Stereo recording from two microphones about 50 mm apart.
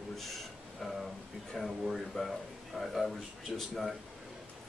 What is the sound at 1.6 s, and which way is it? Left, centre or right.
Speech, centre.